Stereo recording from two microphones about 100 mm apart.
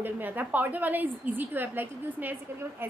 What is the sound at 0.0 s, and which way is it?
A woman's voice, 20° right (ahead or behind).